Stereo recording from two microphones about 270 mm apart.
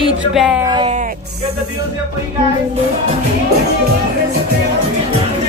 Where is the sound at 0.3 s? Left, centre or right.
Centre.